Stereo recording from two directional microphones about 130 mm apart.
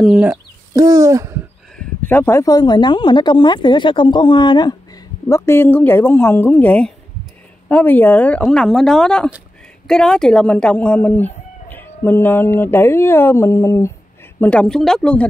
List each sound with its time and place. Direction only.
0.0 s speech: 10° right (ahead or behind)
0.7 s a sound: 25° right (ahead or behind)
1.8 s speech: 15° left (ahead or behind)
14.4 s speech: 10° left (ahead or behind)